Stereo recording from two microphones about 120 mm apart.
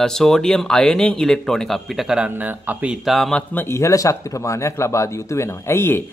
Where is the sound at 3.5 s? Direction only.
20° left (ahead or behind).